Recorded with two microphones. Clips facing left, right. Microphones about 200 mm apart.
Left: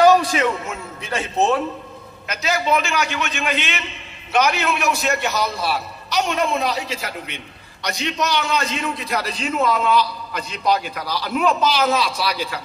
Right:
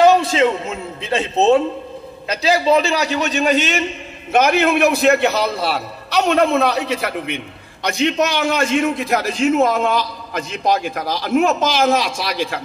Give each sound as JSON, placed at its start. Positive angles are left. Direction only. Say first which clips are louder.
{"t": 0.0, "sound": "a man's voice", "louder": "right 2 dB", "side_deg": -25}
{"t": 4.3, "sound": "a man's voice", "louder": "right 5 dB", "side_deg": -55}